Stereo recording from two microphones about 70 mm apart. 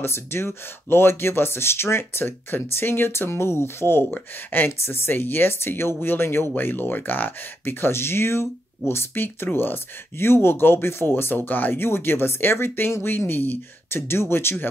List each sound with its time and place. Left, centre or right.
0.0 s speech: left